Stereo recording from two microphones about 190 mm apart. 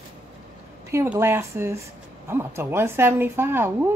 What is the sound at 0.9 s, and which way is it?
A woman's voice, 15° right (ahead or behind).